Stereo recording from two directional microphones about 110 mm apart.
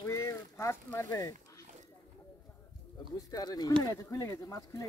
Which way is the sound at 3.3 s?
35° left (ahead or behind).